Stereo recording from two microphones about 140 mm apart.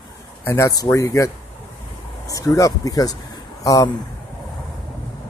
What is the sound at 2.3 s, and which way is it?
Speech, 25° left (ahead or behind).